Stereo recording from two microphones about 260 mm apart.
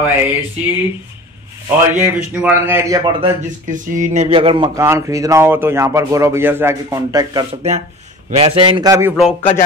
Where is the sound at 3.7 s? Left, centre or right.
Right; by 9.1 s centre.